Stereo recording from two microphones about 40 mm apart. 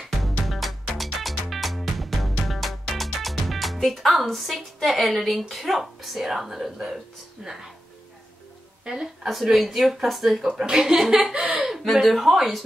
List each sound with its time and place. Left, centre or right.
0.0 s music: centre
4.8 s speech: centre
8.8 s speech: centre
10.6 s a woman's voice: centre